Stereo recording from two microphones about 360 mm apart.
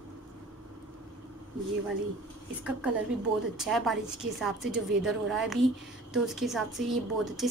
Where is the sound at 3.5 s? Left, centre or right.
Centre.